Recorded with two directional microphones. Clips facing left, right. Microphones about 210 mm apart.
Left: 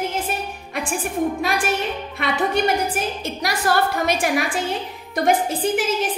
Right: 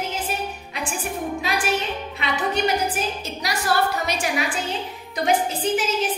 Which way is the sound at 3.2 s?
50° left (ahead or behind).